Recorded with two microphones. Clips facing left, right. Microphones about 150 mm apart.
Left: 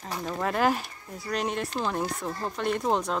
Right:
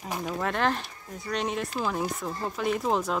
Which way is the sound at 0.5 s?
5° left (ahead or behind).